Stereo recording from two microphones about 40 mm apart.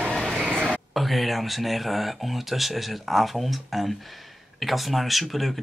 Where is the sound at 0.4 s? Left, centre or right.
Right.